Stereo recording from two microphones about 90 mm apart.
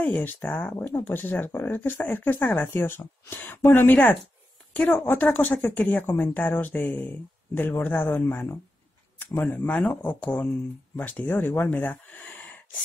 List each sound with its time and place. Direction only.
0.0 s speech: 20° left (ahead or behind)